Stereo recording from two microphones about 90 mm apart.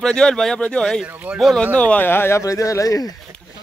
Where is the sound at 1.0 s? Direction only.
15° right (ahead or behind).